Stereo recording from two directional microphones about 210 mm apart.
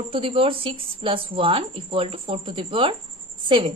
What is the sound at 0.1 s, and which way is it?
A woman's voice, 25° right (ahead or behind).